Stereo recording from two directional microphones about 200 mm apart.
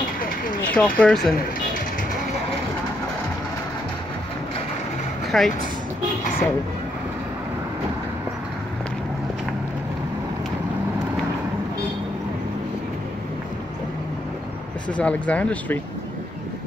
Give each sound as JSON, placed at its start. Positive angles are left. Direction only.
{"t": 0.7, "sound": "speech", "side_deg": 5}
{"t": 5.3, "sound": "speech", "side_deg": 0}
{"t": 14.9, "sound": "speech", "side_deg": 5}